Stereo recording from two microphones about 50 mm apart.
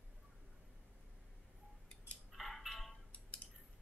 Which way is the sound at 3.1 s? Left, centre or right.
Left.